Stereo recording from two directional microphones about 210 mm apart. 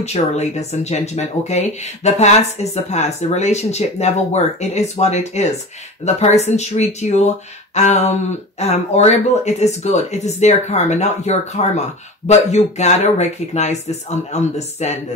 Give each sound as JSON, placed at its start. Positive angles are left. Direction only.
{"t": 0.0, "sound": "speech", "side_deg": 30}